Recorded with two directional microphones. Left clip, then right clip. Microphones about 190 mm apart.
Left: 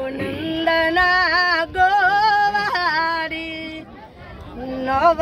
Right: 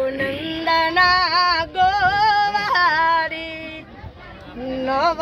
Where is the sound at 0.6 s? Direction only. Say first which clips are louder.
Right 1 dB; 5° left (ahead or behind); by 2.9 s 25° left (ahead or behind).